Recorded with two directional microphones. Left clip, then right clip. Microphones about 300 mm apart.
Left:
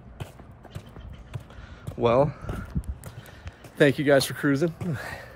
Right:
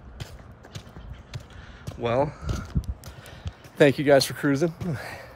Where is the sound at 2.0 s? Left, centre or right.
Centre.